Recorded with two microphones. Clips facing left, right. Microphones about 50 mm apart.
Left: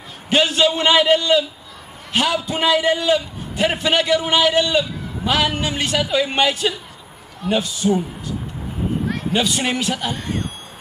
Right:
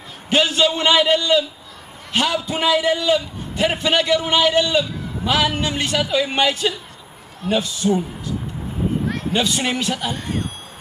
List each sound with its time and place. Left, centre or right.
0.3 s a man's voice: centre
9.0 s speech: centre